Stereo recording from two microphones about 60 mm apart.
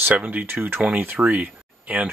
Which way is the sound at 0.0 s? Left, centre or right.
Right.